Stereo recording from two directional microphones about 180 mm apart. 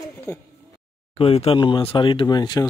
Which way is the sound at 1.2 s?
35° left (ahead or behind).